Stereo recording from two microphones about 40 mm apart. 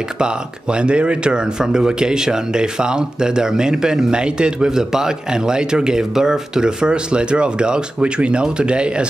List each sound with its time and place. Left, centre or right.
0.2 s speech: right